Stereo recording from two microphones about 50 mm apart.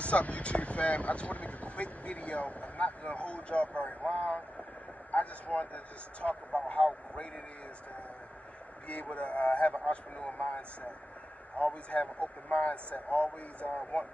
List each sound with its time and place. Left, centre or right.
0.0 s speech: left
6.2 s speech: centre
6.7 s speech: left
8.8 s speech: left